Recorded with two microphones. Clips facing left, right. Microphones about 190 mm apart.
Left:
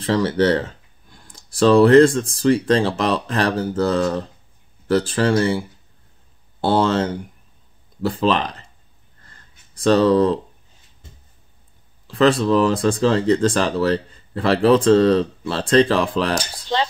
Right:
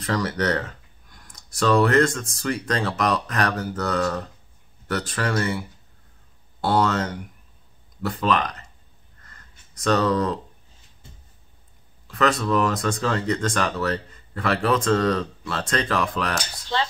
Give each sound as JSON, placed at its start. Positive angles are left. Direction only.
{"t": 0.0, "sound": "speech", "side_deg": 30}
{"t": 9.2, "sound": "a sound", "side_deg": 30}
{"t": 12.1, "sound": "speech", "side_deg": 30}